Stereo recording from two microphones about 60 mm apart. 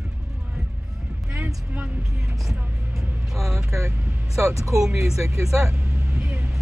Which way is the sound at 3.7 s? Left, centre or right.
Right.